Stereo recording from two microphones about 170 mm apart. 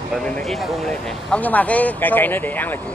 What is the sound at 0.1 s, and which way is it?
Speech, 5° left (ahead or behind).